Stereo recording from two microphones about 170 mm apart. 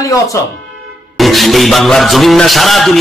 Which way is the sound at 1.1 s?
Centre (ahead or behind).